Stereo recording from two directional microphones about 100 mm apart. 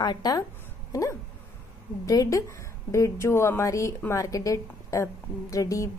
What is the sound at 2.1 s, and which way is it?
A woman's voice, 35° left (ahead or behind).